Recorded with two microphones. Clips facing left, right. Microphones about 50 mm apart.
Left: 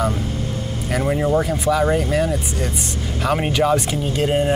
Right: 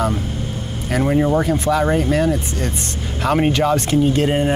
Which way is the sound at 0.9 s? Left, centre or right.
Centre.